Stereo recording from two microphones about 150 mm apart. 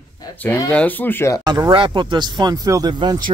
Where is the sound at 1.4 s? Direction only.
30° right (ahead or behind).